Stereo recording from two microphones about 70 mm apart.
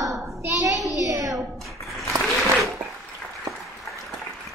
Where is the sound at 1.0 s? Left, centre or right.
Right.